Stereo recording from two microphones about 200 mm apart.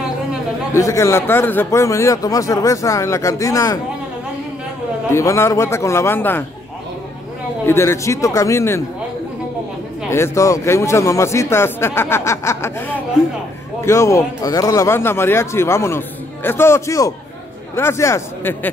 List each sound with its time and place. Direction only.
0.7 s a man's voice: 15° left (ahead or behind)
5.1 s a man's voice: 15° left (ahead or behind)
7.6 s a man's voice: 15° left (ahead or behind)
10.1 s a man's voice: 15° left (ahead or behind)